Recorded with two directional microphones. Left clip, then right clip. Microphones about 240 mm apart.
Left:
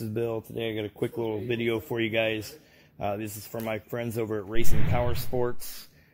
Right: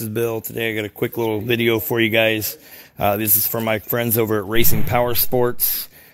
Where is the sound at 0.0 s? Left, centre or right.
Right.